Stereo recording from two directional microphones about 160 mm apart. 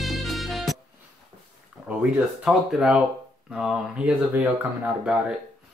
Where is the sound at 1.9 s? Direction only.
5° right (ahead or behind).